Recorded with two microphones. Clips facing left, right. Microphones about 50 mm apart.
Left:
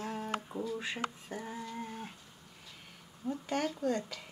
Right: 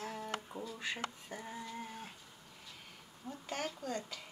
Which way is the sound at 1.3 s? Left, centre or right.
Centre.